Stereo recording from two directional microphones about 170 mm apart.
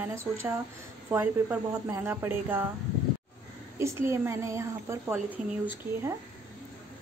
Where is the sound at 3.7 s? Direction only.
15° right (ahead or behind).